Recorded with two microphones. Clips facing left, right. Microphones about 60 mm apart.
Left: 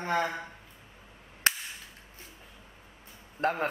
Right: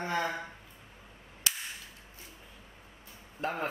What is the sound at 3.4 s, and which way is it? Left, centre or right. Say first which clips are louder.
Speech: left 6 dB; left.